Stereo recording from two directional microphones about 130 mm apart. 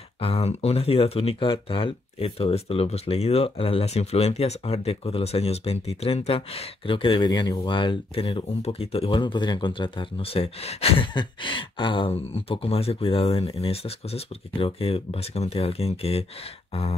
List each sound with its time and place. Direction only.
0.2 s speech: 50° left (ahead or behind)
11.1 s speech: 40° left (ahead or behind)